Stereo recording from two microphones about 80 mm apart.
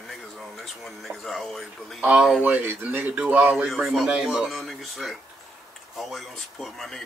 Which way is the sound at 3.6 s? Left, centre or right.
Centre.